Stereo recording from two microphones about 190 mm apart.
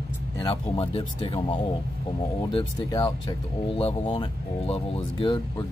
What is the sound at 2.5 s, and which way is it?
Speech, 20° left (ahead or behind).